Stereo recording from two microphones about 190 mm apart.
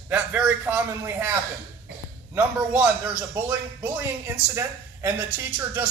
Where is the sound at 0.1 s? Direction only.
10° right (ahead or behind).